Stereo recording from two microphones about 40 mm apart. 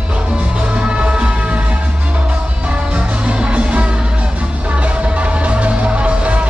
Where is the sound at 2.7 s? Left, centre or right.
Right.